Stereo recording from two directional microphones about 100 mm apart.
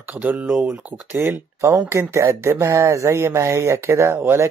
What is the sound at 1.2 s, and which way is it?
Speech, 25° right (ahead or behind).